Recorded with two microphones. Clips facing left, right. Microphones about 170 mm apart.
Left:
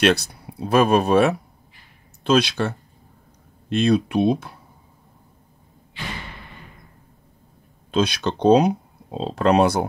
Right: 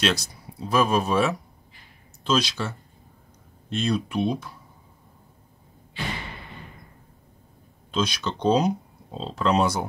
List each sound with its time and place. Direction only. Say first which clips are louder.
0.0 s speech: left 7 dB; 60° left (ahead or behind)
3.7 s speech: left 7 dB; 60° left (ahead or behind)
7.9 s speech: left 5 dB; 60° left (ahead or behind)